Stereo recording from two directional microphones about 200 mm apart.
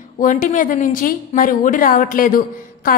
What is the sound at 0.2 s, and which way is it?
A woman's voice, 40° left (ahead or behind).